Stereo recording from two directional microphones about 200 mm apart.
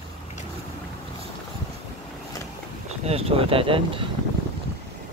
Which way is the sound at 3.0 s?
30° right (ahead or behind).